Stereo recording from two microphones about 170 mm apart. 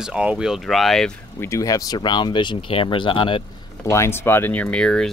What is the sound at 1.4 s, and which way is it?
Speech, 20° left (ahead or behind).